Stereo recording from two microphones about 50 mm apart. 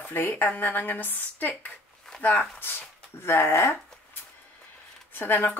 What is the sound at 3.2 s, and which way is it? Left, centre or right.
Speech, left.